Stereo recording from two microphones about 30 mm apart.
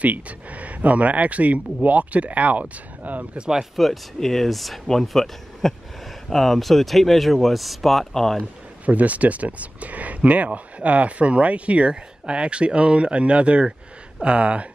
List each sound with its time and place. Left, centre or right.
0.0 s speech: right
3.0 s speech: right
3.7 s speech: centre
8.1 s speech: centre
8.8 s speech: right
11.9 s speech: right